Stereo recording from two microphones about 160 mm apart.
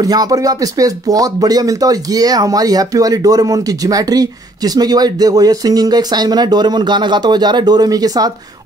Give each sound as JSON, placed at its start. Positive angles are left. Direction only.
{"t": 0.0, "sound": "speech", "side_deg": -25}